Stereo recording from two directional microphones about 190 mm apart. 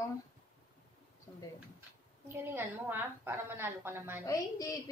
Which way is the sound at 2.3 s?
10° right (ahead or behind).